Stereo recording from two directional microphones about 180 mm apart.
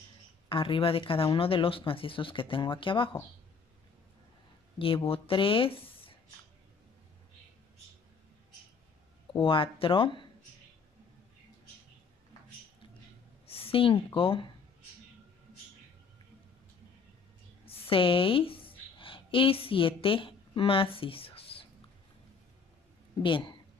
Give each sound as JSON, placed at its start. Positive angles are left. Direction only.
{"t": 0.5, "sound": "speech", "side_deg": 30}
{"t": 4.7, "sound": "speech", "side_deg": 30}
{"t": 9.3, "sound": "speech", "side_deg": 30}
{"t": 13.5, "sound": "a woman's voice", "side_deg": 30}
{"t": 17.6, "sound": "a sound", "side_deg": 30}
{"t": 23.1, "sound": "a woman's voice", "side_deg": 25}